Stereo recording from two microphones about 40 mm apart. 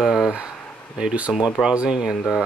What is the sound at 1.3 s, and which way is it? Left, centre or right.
Speech, centre.